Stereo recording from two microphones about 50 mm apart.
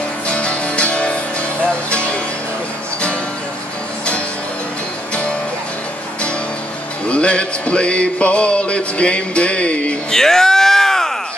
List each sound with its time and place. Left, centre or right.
0.3 s music: left
7.1 s mantra: left
10.1 s a sound: centre